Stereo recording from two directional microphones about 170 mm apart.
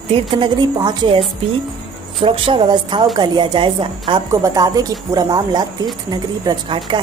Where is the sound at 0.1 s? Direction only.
25° right (ahead or behind).